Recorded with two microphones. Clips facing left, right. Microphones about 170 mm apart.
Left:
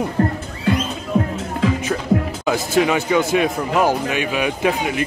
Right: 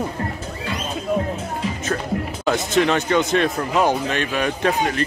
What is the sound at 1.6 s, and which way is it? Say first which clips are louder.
Music: left 10 dB; 90° left.